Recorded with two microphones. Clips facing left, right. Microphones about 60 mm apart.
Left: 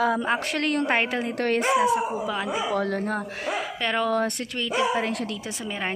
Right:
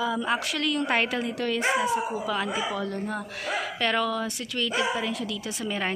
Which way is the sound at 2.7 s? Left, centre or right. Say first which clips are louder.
Left 5 dB; left.